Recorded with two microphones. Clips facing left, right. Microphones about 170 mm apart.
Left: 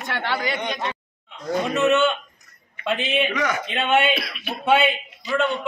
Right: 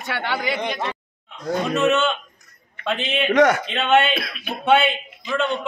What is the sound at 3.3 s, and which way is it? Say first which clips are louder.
Speech: right 9 dB; 70° right (ahead or behind).